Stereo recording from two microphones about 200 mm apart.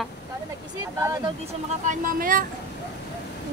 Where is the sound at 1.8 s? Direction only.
40° right (ahead or behind).